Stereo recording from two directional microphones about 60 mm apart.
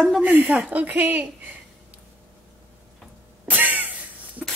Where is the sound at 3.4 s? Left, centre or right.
Right.